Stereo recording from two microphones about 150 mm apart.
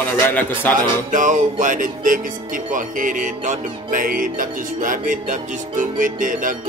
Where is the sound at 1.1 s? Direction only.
55° right (ahead or behind).